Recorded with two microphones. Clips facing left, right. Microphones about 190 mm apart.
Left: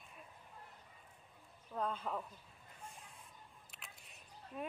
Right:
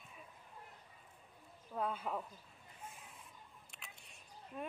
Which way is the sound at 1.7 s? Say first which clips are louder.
Even; 5° right (ahead or behind).